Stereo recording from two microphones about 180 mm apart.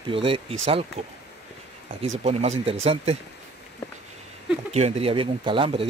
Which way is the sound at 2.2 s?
35° right (ahead or behind).